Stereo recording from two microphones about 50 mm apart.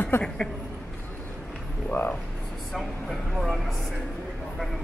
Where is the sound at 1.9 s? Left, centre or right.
Left.